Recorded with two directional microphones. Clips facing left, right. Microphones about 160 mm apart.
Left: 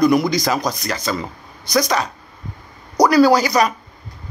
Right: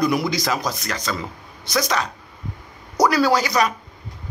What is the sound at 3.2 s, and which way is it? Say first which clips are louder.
Speech: left 5 dB; 40° left (ahead or behind).